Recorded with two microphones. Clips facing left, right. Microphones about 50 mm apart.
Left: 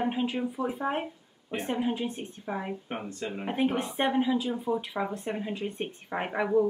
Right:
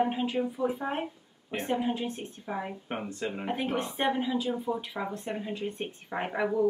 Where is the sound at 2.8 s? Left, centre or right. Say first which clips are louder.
Right 1 dB; centre.